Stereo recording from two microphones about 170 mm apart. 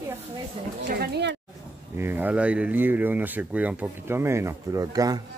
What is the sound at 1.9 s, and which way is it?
Speech, 10° right (ahead or behind).